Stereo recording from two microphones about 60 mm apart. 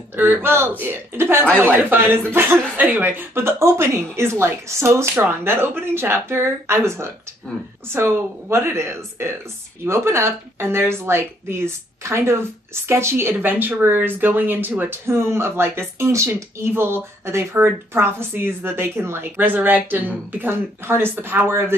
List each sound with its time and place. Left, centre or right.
0.1 s speech: right
19.4 s speech: right